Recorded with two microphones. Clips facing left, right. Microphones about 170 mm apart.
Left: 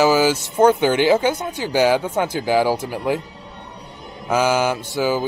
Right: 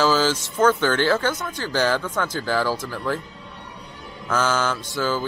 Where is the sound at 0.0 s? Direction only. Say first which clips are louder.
Left 4 dB; 10° left (ahead or behind).